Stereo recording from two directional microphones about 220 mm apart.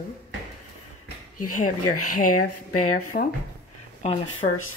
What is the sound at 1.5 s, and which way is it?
Speech, 35° left (ahead or behind).